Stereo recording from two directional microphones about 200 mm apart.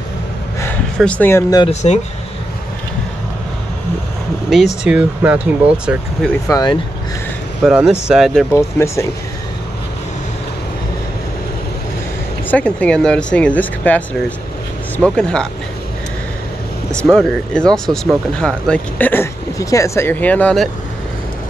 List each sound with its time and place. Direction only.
0.9 s speech: 5° left (ahead or behind)
1.7 s speech: 35° left (ahead or behind)
4.8 s speech: 5° right (ahead or behind)
6.4 s speech: 20° left (ahead or behind)
7.6 s speech: 5° right (ahead or behind)
8.5 s speech: 15° left (ahead or behind)
12.4 s speech: 5° left (ahead or behind)
16.9 s speech: 5° left (ahead or behind)
18.7 s speech: 10° left (ahead or behind)